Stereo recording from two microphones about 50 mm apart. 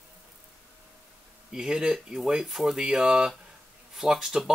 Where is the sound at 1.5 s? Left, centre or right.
Centre.